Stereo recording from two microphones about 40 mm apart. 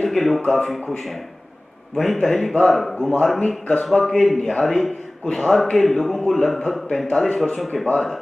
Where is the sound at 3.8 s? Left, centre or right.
Centre.